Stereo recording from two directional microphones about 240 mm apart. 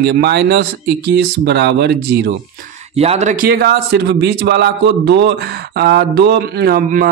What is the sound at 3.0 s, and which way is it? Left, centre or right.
A man's voice, right.